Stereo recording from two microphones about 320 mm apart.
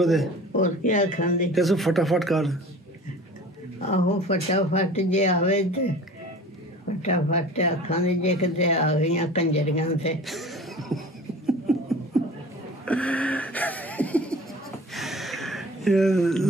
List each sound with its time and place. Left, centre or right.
0.0 s speech: centre
0.6 s speech: left
1.5 s speech: centre
3.9 s speech: centre
7.0 s speech: left
10.2 s chuckle: centre
11.7 s beatboxing: centre
12.8 s a sound: centre
15.0 s gasp: centre